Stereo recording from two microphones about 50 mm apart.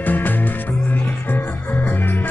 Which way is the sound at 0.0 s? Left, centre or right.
Left.